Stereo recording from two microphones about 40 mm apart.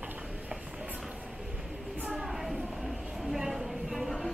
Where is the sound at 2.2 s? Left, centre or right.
Centre.